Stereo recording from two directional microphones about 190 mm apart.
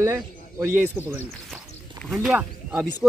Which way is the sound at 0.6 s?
10° right (ahead or behind).